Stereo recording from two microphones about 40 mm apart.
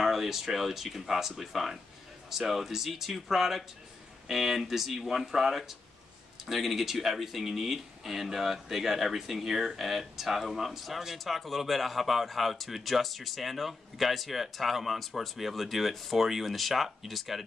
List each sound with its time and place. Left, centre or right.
0.0 s speech: centre